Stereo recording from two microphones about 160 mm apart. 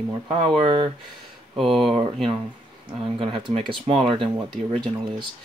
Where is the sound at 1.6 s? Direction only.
Centre (ahead or behind).